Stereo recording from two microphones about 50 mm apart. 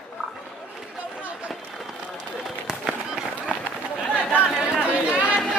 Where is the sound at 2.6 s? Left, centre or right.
Centre.